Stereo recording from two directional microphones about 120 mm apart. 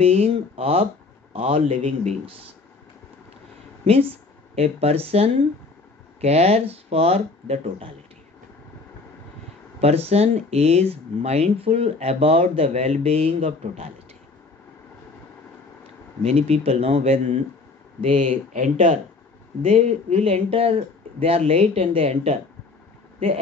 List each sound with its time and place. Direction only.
0.0 s speech: 55° right (ahead or behind)
3.8 s speech: 55° right (ahead or behind)
9.8 s speech: 60° right (ahead or behind)
16.2 s speech: 60° right (ahead or behind)
18.1 s speech: 90° right
19.7 s speech: 65° right (ahead or behind)